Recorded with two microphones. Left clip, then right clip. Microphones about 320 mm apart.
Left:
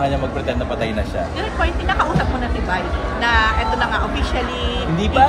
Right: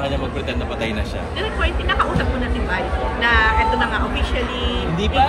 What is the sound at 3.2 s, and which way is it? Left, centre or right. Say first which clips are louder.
Music: right 1 dB; left.